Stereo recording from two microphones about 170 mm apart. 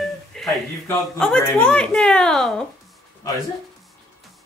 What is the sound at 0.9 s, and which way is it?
Speech, 5° left (ahead or behind).